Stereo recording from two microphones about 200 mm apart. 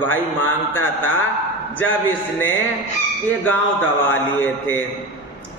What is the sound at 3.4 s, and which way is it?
Speech, 10° left (ahead or behind).